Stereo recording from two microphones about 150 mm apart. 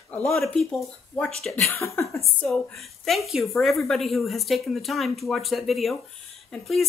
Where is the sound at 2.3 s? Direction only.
5° left (ahead or behind).